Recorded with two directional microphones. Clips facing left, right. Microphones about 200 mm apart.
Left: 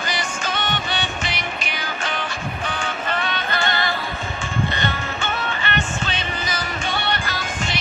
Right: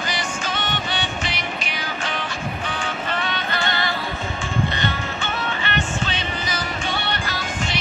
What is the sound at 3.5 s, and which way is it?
Music, 50° left (ahead or behind).